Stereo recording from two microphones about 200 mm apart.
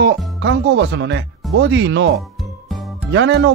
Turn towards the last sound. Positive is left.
turn(degrees=-60)  # may be behind; listen again after turning